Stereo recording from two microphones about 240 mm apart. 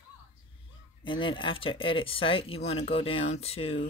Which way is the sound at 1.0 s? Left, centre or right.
Left.